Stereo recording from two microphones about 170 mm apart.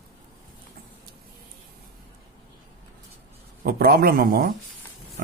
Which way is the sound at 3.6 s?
60° right (ahead or behind).